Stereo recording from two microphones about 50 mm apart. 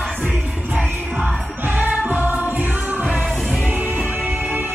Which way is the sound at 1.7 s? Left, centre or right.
Right.